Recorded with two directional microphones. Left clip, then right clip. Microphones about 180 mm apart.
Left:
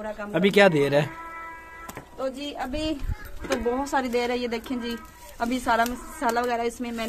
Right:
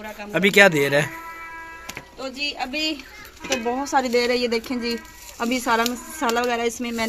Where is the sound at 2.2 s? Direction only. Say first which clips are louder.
Right 3 dB; 5° left (ahead or behind).